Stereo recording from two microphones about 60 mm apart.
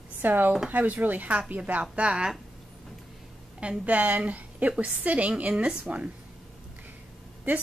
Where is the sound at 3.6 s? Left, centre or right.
Right.